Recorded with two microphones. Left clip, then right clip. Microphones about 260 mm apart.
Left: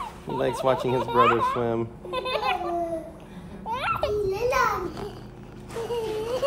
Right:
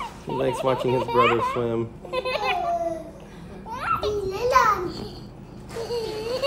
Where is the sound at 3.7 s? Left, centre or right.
Left.